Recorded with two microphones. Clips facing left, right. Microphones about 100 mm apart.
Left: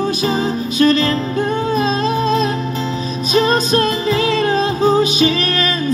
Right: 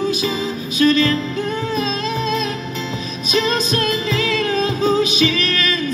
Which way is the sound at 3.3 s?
40° left (ahead or behind).